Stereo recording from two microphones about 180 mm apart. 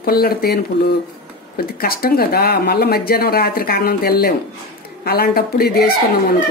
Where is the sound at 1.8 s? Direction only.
55° left (ahead or behind).